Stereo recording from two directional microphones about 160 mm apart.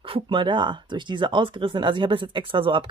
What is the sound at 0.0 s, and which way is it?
Speech, 30° right (ahead or behind).